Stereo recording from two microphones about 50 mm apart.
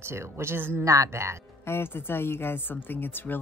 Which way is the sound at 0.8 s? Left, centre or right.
Right.